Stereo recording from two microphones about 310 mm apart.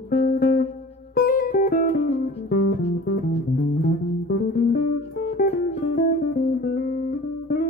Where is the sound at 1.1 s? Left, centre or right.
Left.